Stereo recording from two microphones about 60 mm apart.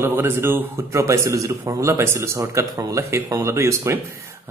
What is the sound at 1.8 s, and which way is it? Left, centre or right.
A man's voice, right.